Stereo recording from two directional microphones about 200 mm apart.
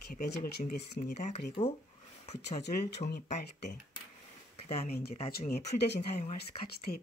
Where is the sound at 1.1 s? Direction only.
35° left (ahead or behind).